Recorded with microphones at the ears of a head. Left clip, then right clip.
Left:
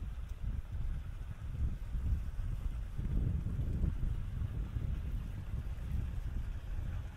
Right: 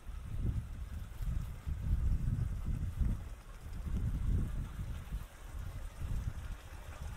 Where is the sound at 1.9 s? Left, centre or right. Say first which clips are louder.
Right 5 dB; right.